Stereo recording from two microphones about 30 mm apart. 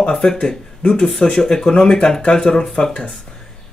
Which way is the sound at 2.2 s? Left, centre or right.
Left.